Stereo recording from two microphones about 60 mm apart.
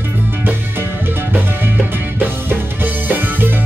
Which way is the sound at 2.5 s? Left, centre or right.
Right.